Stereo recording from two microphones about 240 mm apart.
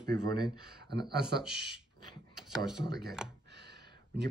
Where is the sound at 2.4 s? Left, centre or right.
Centre.